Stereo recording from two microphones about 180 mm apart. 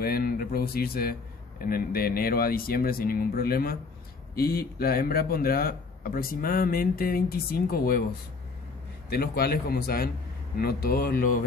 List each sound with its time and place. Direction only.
0.0 s a man's voice: 55° left (ahead or behind)
9.1 s a man's voice: 60° left (ahead or behind)